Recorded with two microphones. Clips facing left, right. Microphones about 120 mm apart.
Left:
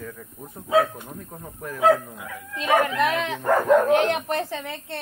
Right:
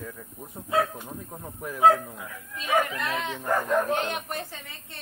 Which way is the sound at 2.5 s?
90° left.